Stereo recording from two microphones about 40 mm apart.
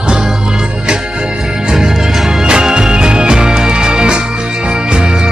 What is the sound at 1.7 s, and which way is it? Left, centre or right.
Music, centre.